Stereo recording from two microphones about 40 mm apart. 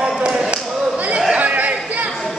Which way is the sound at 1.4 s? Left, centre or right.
Right.